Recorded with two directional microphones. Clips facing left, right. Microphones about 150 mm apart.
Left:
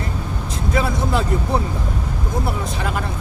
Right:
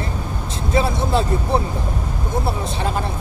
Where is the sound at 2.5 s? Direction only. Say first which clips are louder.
Right 1 dB; 30° right (ahead or behind).